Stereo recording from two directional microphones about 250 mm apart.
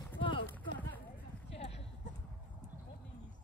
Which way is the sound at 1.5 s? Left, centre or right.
Left.